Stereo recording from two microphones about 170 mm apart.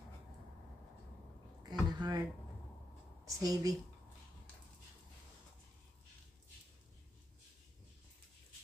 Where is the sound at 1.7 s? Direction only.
25° right (ahead or behind).